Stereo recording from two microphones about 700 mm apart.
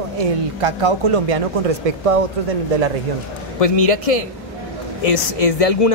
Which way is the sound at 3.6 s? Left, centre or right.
Left.